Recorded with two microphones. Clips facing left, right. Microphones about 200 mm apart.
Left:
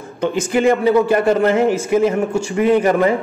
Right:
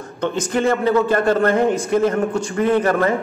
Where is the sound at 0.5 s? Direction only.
15° left (ahead or behind).